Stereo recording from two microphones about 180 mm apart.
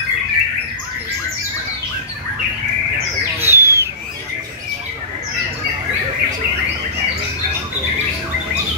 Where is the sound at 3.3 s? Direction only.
15° right (ahead or behind).